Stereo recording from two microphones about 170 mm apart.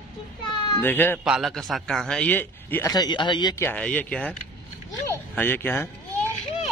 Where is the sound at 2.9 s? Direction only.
25° left (ahead or behind).